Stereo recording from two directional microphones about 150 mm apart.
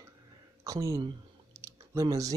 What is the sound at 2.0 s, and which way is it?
Speech, 20° right (ahead or behind).